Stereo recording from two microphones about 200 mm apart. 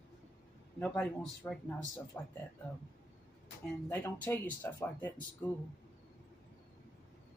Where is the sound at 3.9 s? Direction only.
10° left (ahead or behind).